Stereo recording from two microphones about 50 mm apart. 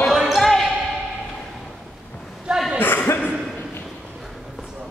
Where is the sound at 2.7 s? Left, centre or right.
Left.